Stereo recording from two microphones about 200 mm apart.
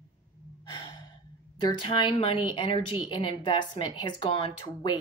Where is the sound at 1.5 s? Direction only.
20° left (ahead or behind).